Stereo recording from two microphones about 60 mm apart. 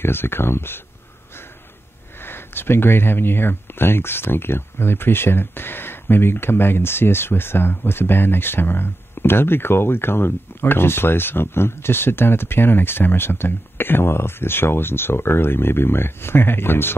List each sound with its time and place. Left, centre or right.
0.0 s speech: left
2.1 s speech: left